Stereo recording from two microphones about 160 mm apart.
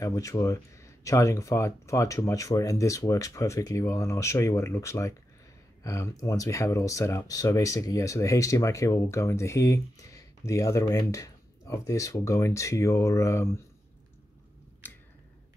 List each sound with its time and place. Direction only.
0.0 s speech: 20° left (ahead or behind)